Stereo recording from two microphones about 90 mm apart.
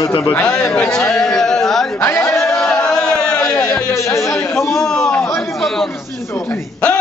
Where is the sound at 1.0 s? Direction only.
5° left (ahead or behind).